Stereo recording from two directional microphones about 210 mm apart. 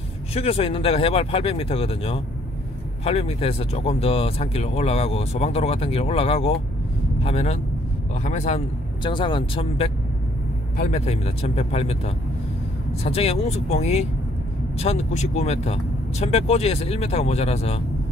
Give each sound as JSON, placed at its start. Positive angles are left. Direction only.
{"t": 0.3, "sound": "speech", "side_deg": 30}